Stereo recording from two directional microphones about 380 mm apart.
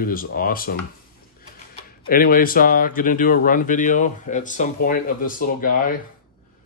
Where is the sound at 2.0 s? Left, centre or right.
Left.